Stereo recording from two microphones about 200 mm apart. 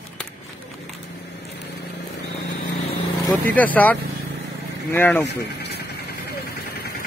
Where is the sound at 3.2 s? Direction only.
10° left (ahead or behind).